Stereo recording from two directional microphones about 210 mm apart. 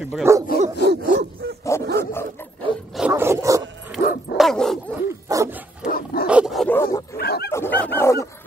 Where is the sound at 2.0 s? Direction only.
10° left (ahead or behind).